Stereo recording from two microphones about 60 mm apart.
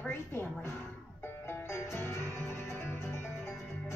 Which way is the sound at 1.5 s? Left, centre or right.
Left.